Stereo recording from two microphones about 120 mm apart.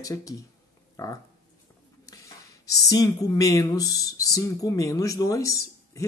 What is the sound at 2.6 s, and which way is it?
Speech, 30° left (ahead or behind).